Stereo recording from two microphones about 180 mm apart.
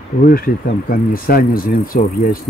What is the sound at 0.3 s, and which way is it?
Speech, 55° left (ahead or behind).